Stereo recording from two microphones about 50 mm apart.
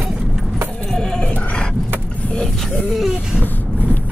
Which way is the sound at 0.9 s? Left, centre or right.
Centre.